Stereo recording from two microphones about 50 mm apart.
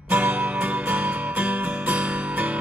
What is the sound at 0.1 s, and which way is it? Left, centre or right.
Music, right.